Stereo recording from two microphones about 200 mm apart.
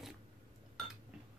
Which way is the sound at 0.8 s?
Centre (ahead or behind).